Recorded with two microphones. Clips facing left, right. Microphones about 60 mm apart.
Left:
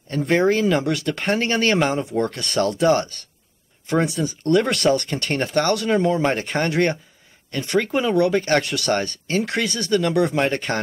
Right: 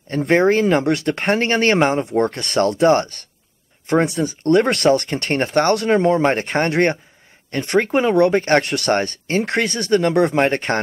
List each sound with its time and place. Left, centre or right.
0.1 s speech: right